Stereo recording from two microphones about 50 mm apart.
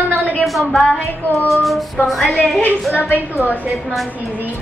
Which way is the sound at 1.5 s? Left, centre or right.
Centre.